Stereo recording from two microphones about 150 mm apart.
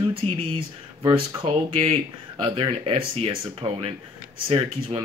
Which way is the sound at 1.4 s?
35° right (ahead or behind).